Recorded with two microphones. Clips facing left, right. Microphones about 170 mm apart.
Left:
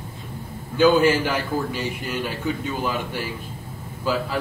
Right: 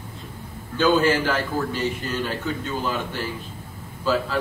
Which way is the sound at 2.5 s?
10° left (ahead or behind).